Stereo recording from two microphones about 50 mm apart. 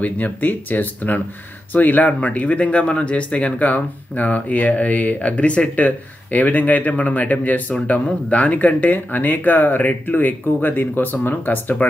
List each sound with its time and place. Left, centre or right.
0.0 s speech: left